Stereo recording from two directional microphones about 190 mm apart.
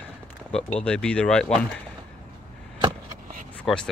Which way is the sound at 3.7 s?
Centre (ahead or behind).